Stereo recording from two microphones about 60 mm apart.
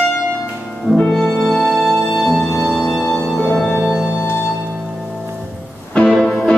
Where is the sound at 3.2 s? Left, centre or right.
Centre.